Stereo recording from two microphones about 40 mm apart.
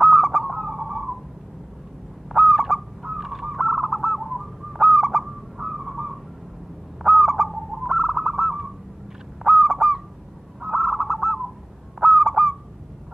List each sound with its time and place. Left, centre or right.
0.0 s owl: centre
2.2 s fowl: centre
3.0 s bird: centre
7.0 s owl: centre
9.4 s honk: centre
10.7 s bird: centre
12.0 s honk: centre